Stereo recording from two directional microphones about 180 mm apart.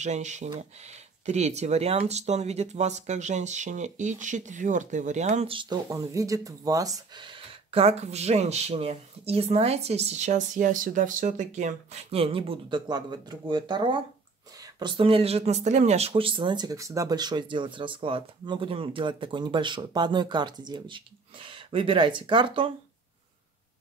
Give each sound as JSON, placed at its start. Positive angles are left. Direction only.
{"t": 0.0, "sound": "speech", "side_deg": -40}